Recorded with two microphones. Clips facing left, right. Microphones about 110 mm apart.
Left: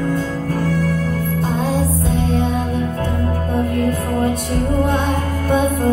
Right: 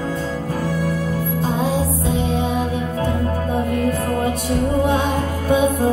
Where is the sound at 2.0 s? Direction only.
Centre (ahead or behind).